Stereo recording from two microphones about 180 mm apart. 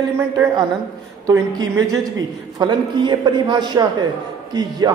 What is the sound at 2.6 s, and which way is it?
A man's voice, 25° right (ahead or behind).